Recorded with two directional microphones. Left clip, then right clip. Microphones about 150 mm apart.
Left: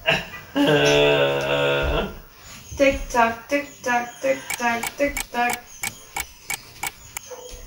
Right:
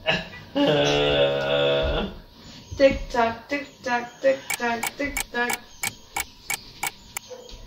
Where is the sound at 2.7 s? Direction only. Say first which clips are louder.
Left 1 dB; 25° left (ahead or behind).